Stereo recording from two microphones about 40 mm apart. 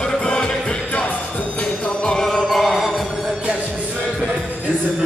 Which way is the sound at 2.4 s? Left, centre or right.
Centre.